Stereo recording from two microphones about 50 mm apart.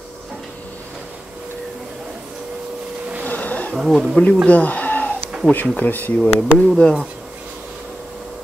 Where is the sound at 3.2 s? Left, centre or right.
Left.